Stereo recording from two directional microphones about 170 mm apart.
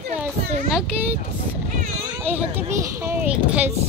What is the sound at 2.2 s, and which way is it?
Speech, 10° right (ahead or behind).